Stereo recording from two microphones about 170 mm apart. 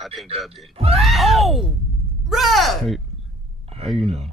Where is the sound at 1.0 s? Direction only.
Centre (ahead or behind).